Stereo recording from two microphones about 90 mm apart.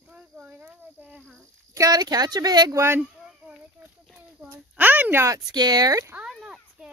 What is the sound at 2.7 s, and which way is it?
Speech, 30° right (ahead or behind).